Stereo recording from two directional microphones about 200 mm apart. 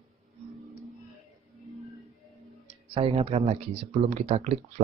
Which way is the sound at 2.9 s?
30° right (ahead or behind).